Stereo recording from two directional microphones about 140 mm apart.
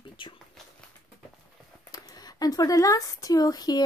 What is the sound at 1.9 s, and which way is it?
Speech, 30° left (ahead or behind).